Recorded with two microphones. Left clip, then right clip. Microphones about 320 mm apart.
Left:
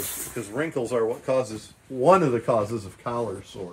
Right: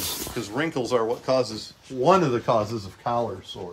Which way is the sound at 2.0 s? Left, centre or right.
Centre.